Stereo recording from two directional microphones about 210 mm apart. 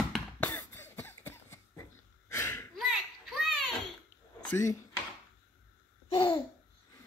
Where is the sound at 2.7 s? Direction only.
Centre (ahead or behind).